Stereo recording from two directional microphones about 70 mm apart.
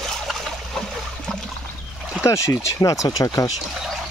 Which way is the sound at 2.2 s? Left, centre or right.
Left.